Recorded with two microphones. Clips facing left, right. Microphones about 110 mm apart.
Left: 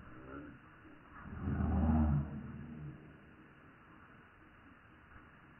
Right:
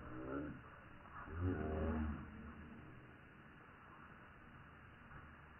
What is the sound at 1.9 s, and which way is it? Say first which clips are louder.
Vehicle: left 10 dB; 55° left (ahead or behind).